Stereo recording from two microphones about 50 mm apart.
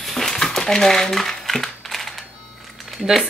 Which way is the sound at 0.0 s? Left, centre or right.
Centre.